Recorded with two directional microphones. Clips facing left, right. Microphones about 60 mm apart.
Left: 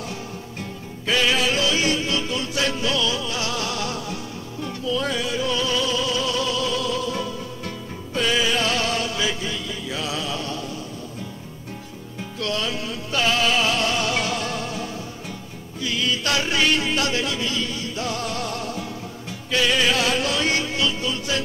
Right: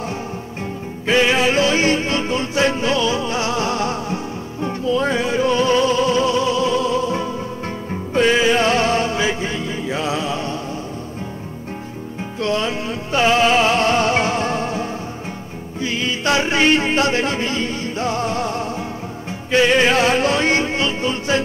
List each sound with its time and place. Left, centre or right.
1.0 s music: right
12.4 s music: right